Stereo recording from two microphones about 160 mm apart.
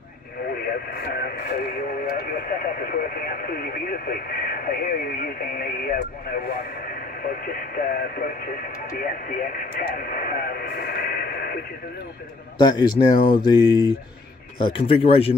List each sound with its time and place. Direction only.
0.5 s radio: 75° left (ahead or behind)
1.9 s speech: 60° left (ahead or behind)
7.9 s speech: 65° left (ahead or behind)
12.5 s speech: 25° left (ahead or behind)